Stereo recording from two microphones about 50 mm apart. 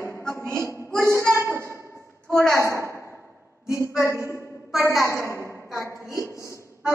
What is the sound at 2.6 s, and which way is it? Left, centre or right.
Speech, right.